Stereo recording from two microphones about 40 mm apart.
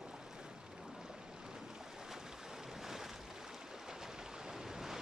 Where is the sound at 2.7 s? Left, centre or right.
Centre.